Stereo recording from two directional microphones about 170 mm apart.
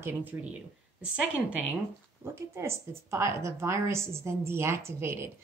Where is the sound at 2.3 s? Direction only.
15° right (ahead or behind).